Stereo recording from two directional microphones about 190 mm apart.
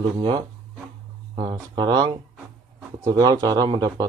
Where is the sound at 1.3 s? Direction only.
25° right (ahead or behind).